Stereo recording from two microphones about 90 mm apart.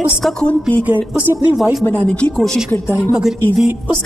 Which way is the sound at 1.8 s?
20° left (ahead or behind).